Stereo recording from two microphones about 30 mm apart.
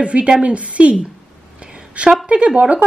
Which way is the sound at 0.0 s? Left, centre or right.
Right.